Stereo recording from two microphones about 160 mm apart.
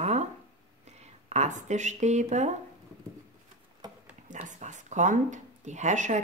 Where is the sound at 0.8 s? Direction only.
45° right (ahead or behind).